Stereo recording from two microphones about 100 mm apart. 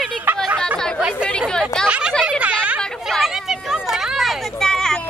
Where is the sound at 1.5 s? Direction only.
5° left (ahead or behind).